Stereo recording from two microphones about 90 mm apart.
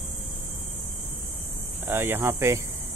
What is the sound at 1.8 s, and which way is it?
Speech, 25° right (ahead or behind).